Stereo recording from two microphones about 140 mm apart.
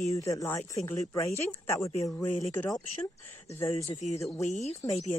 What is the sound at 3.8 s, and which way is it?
Speech, 50° left (ahead or behind).